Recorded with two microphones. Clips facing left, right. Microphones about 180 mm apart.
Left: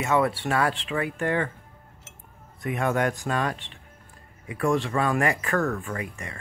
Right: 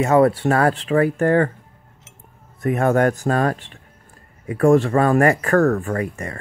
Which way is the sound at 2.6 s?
45° right (ahead or behind).